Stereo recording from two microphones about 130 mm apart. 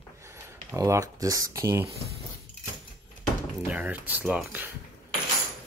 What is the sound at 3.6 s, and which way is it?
Speech, 10° right (ahead or behind).